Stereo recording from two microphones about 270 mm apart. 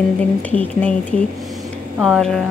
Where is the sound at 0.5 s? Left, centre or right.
Centre.